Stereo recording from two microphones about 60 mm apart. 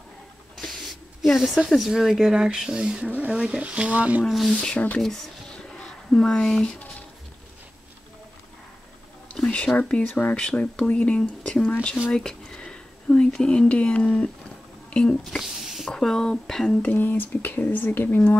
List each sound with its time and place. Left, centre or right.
0.6 s a sound: centre
1.7 s speech: centre; by 4.2 s right
4.2 s speech: centre
4.7 s speech: left
5.0 s a sound: centre
9.5 s speech: centre
14.9 s squish: centre
15.4 s a sound: centre
15.9 s speech: centre
16.8 s speech: left